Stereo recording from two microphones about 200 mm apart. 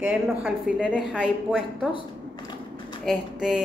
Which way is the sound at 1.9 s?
25° left (ahead or behind).